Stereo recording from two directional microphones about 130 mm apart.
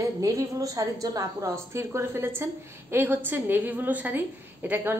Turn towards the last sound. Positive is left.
turn(degrees=-15)  # may be behind; listen again after turning